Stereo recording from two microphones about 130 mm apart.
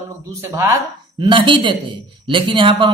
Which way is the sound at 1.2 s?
40° right (ahead or behind).